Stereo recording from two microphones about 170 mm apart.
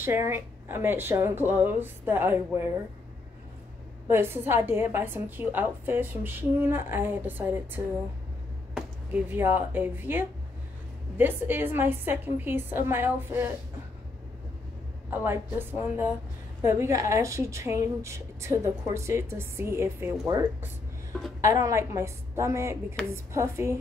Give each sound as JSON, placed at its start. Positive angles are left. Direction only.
{"t": 0.0, "sound": "a woman's voice", "side_deg": -15}
{"t": 4.1, "sound": "a woman's voice", "side_deg": -15}
{"t": 15.0, "sound": "a woman's voice", "side_deg": -10}